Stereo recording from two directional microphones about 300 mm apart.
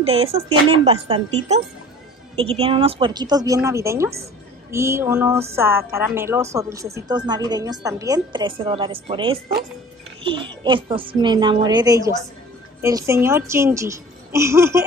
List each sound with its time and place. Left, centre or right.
0.0 s a woman's voice: centre